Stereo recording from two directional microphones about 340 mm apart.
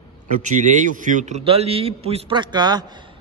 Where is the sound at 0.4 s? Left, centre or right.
Right.